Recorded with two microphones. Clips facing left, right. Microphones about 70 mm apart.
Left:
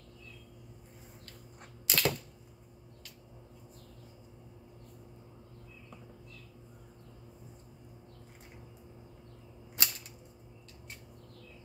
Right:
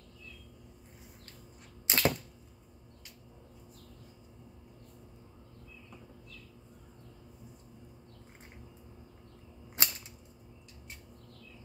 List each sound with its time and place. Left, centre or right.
1.9 s arrow: right
9.8 s cap gun: right